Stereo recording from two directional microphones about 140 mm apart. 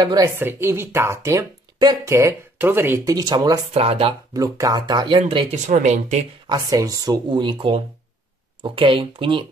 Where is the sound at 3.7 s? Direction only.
45° right (ahead or behind).